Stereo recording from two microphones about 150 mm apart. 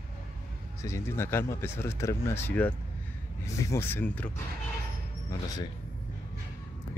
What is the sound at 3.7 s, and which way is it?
Speech, 10° left (ahead or behind).